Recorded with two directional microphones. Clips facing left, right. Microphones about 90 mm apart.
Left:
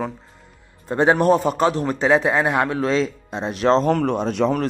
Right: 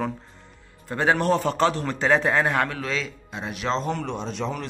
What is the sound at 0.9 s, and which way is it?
Speech, 20° left (ahead or behind).